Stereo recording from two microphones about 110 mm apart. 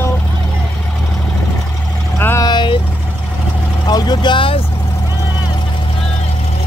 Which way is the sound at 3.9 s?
40° left (ahead or behind).